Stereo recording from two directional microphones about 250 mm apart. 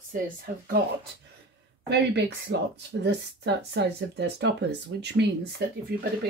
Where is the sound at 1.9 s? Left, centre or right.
Right.